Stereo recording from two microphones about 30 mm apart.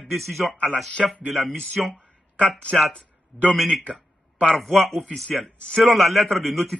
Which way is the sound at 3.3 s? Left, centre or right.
Right.